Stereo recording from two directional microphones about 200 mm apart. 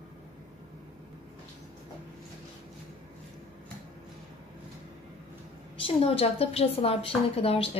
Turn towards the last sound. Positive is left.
turn(degrees=30)  # may be behind; listen again after turning